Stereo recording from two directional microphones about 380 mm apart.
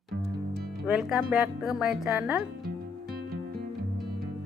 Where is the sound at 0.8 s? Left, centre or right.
Centre.